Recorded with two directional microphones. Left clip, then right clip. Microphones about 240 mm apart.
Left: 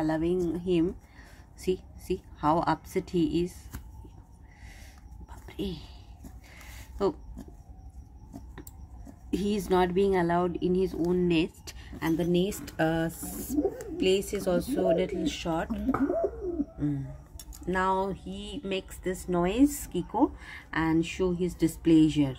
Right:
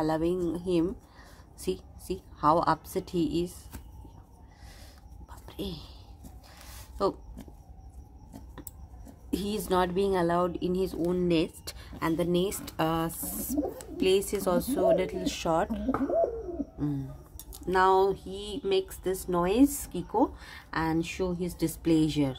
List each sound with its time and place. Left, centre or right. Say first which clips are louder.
0.0 s speech: even; centre
5.5 s speech: left 2 dB; centre
6.7 s a sound: even; centre
9.3 s speech: left 2 dB; centre
17.6 s speech: right 5 dB; centre